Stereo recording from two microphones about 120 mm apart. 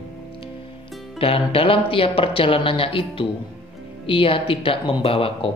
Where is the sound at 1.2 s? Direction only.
50° left (ahead or behind).